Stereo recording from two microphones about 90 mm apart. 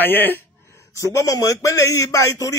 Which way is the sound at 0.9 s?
35° left (ahead or behind).